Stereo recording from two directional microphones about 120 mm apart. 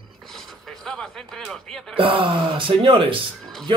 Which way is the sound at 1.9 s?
50° right (ahead or behind).